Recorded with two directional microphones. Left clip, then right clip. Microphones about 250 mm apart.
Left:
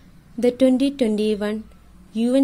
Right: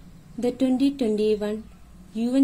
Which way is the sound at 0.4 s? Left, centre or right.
Left.